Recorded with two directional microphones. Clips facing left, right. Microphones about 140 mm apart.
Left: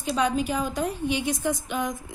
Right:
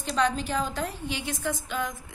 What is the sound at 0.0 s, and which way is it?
A woman's voice, 10° left (ahead or behind).